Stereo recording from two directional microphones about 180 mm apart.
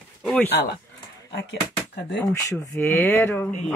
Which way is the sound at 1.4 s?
75° left (ahead or behind).